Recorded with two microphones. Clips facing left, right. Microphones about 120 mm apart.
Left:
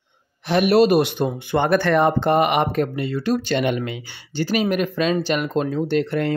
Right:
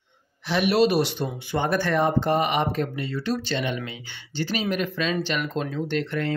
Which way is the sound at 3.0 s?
40° left (ahead or behind).